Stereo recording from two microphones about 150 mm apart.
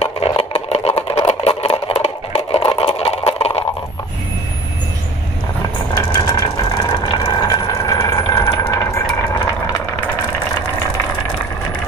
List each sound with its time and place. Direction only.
0.0 s engine: 40° left (ahead or behind)
5.9 s vehicle: 25° left (ahead or behind)
7.4 s a sound: 25° left (ahead or behind)